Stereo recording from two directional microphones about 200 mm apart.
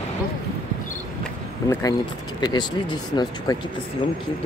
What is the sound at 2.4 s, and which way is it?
Speech, 20° left (ahead or behind).